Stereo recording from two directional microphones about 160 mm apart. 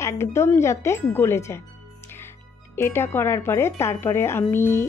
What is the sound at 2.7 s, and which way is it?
Speech, 15° left (ahead or behind).